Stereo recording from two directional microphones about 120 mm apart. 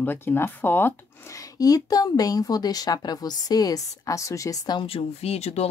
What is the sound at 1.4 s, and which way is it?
Speech, 30° left (ahead or behind).